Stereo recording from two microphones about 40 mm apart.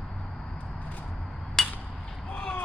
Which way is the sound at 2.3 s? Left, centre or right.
Left.